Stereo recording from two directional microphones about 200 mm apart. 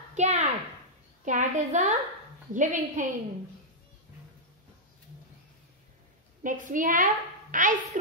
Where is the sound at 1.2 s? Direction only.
40° right (ahead or behind).